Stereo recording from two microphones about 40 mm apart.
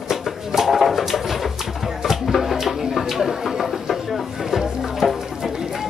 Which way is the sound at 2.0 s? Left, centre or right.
Centre.